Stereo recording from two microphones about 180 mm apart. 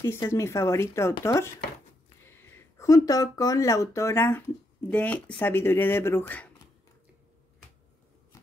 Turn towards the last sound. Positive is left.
turn(degrees=10)  # may be behind; listen again after turning